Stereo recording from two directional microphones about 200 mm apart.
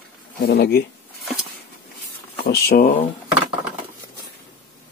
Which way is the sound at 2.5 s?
50° left (ahead or behind).